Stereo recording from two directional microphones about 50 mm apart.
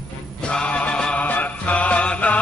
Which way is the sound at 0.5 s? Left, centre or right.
Left.